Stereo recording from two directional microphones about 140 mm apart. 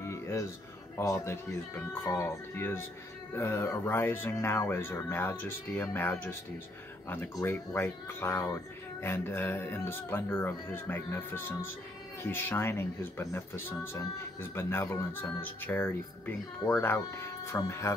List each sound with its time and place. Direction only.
0.0 s a sound: 20° left (ahead or behind)
0.9 s speech: 20° left (ahead or behind)
7.4 s speech: 15° left (ahead or behind)